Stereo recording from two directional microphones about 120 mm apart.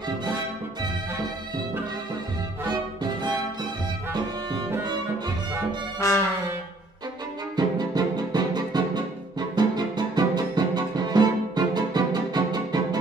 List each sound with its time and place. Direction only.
2.7 s music: 40° right (ahead or behind)
5.9 s music: 25° left (ahead or behind)
7.5 s music: 35° right (ahead or behind)